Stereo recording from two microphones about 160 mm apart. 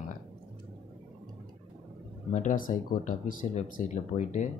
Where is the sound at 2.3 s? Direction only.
55° left (ahead or behind).